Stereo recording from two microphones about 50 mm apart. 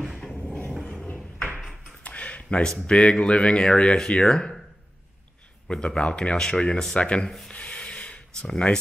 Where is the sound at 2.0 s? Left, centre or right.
Left.